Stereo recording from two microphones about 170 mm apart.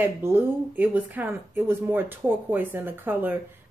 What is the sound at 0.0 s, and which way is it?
Speech, 15° right (ahead or behind).